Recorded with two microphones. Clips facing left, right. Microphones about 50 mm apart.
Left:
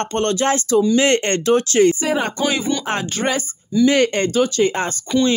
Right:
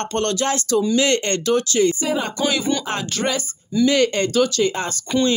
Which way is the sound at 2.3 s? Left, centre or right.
Left.